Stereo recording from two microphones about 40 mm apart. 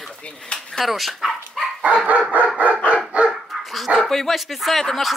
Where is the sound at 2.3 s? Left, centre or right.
Right.